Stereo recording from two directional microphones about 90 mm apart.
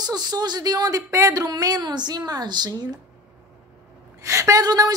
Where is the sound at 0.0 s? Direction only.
50° right (ahead or behind).